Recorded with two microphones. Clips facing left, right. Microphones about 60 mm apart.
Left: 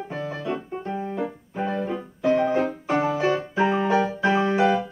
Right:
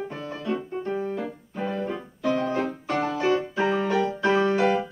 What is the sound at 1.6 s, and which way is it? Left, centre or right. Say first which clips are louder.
Music: left 2 dB; centre.